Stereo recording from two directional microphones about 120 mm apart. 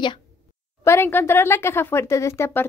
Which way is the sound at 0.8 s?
20° left (ahead or behind).